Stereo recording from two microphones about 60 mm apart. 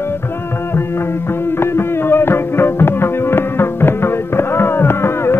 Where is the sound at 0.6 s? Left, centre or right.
Left.